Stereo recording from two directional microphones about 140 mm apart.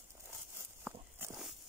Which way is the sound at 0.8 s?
15° right (ahead or behind).